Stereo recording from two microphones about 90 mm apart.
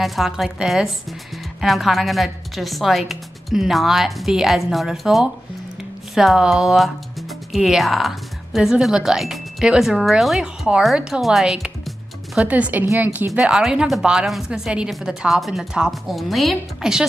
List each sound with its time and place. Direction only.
0.0 s a woman's voice: centre (ahead or behind)
12.4 s speech: 15° right (ahead or behind)
13.3 s a woman's voice: 5° right (ahead or behind)